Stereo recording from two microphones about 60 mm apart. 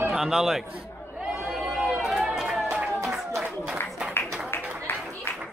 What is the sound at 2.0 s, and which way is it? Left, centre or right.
Run, centre.